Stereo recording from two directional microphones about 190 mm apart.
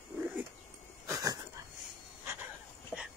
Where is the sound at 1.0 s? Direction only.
20° right (ahead or behind).